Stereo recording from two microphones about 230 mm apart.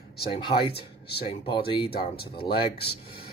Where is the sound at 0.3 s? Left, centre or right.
Left.